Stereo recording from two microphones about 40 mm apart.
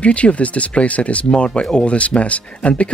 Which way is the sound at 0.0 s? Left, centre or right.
Left.